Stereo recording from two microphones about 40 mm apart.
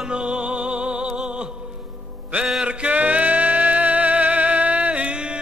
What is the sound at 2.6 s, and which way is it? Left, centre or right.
Music, right.